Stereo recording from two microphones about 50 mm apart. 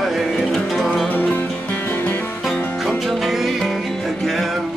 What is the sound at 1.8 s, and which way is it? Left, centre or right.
Music, left.